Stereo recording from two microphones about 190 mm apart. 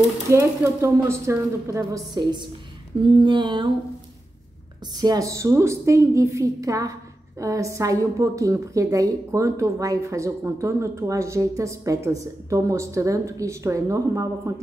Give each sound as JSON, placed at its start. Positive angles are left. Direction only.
{"t": 0.3, "sound": "a woman's voice", "side_deg": -15}
{"t": 3.1, "sound": "mantra", "side_deg": -25}
{"t": 5.0, "sound": "a woman's voice", "side_deg": -20}